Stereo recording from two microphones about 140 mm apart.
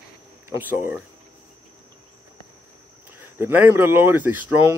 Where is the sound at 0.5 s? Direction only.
15° right (ahead or behind).